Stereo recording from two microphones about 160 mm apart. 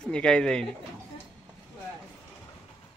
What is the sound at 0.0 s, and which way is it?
Speech, 5° left (ahead or behind).